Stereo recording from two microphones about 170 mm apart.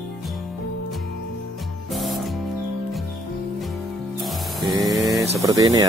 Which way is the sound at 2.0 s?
Centre (ahead or behind).